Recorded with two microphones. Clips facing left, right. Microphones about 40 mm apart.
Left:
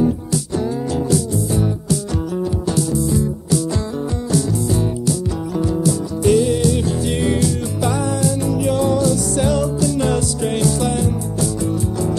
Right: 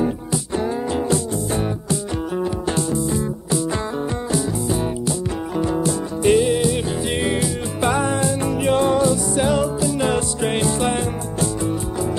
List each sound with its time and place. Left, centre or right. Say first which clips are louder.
0.0 s music: left 3 dB; right
7.8 s music: right 1 dB; right